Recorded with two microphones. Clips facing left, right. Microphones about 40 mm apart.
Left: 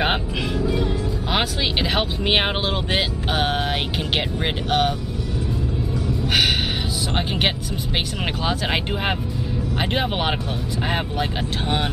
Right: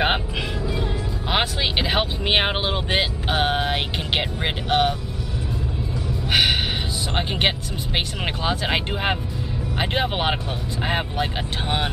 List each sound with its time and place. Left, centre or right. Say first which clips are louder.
0.0 s speech: even; centre
7.2 s speech: right 1 dB; centre